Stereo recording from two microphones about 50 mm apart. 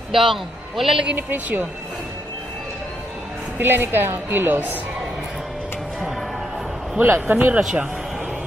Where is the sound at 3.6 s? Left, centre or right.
Right.